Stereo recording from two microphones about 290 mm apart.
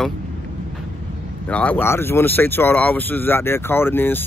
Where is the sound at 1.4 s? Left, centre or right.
Centre.